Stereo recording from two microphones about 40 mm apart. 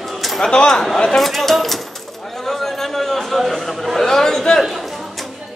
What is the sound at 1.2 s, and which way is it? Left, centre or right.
Speech, centre.